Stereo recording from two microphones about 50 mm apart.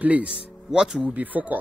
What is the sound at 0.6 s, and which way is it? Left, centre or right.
Speech, centre.